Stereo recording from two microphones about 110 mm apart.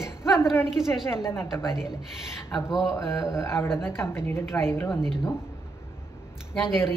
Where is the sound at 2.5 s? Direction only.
5° right (ahead or behind).